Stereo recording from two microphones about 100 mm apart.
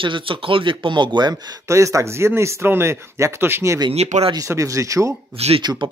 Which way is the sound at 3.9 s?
90° right.